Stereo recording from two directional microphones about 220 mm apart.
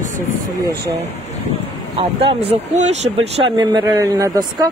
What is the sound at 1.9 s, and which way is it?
Speech, 25° right (ahead or behind).